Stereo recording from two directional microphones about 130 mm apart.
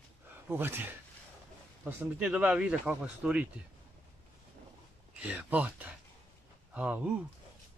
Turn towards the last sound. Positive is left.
turn(degrees=-10)  # may be behind; listen again after turning